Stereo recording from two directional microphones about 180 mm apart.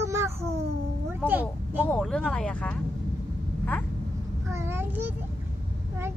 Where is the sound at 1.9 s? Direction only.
5° left (ahead or behind).